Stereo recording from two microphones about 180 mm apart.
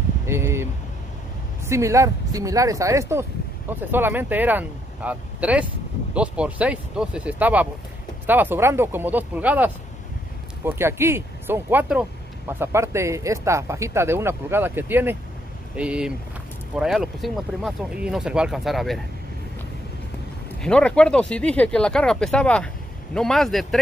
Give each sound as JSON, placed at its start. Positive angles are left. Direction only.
{"t": 0.3, "sound": "speech", "side_deg": -15}
{"t": 1.7, "sound": "speech", "side_deg": -15}
{"t": 20.6, "sound": "speech", "side_deg": 5}